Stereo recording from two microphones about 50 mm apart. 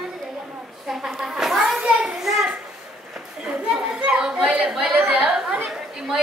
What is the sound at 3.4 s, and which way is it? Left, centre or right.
Children playing, centre.